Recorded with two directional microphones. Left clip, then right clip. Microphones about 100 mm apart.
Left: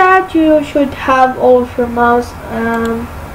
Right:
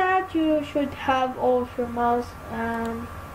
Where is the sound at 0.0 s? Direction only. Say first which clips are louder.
Left 13 dB; 20° right (ahead or behind).